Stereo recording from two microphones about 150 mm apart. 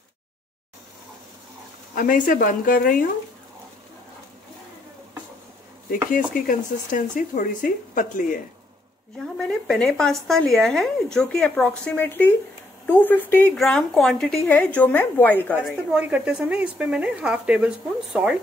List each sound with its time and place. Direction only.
2.0 s speech: 65° left (ahead or behind)
6.1 s speech: 65° left (ahead or behind)
9.2 s a woman's voice: 5° left (ahead or behind)
13.6 s a woman's voice: centre (ahead or behind)
15.5 s a woman's voice: 5° right (ahead or behind)